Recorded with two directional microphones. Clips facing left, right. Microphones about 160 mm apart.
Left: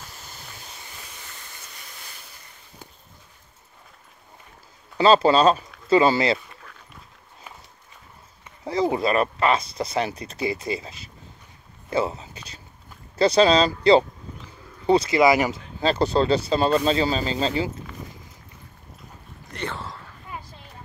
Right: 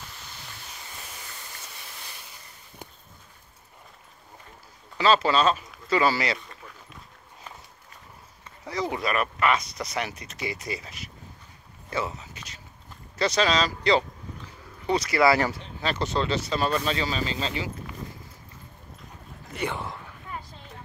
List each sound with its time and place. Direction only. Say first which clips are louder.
4.9 s speech: left 5 dB; 30° left (ahead or behind)
8.6 s speech: left 6 dB; 30° left (ahead or behind)
11.9 s a sound: left 6 dB; 30° left (ahead or behind)
13.2 s speech: left 7 dB; 30° left (ahead or behind)
15.8 s speech: left 7 dB; 30° left (ahead or behind)
19.5 s a sound: right 1 dB; 15° right (ahead or behind)